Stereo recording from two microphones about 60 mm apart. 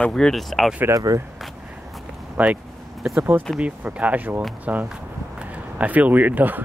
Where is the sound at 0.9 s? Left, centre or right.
Right.